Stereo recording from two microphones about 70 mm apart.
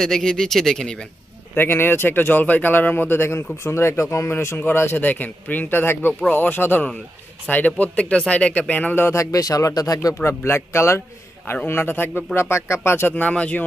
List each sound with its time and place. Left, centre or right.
0.0 s speech: centre
1.5 s speech: left
4.6 s speech: left
9.1 s speech: left
10.1 s speech: left; by 13.7 s centre